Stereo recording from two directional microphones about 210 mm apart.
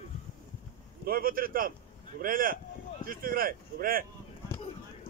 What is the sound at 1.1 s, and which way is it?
Speech, 45° right (ahead or behind).